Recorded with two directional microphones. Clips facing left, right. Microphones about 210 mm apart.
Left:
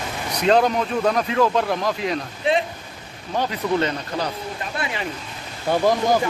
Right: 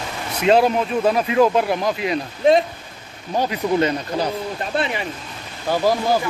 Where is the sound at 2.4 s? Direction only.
45° right (ahead or behind).